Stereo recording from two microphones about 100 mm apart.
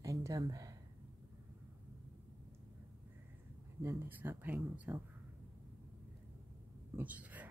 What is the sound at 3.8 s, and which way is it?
Speech, 20° right (ahead or behind).